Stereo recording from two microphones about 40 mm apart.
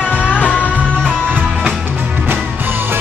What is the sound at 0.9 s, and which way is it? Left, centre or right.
Music, left.